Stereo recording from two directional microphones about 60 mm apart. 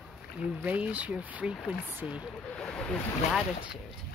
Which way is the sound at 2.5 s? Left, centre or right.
Centre.